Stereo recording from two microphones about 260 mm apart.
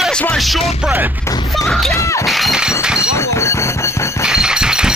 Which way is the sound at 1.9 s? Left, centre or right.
Centre.